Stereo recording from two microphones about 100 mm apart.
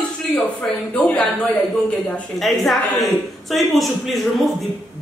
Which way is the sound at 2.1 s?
Centre (ahead or behind).